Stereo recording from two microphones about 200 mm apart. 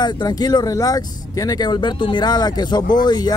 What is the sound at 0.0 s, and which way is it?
Speech, 20° left (ahead or behind).